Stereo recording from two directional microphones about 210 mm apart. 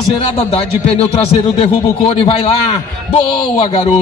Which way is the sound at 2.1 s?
25° left (ahead or behind).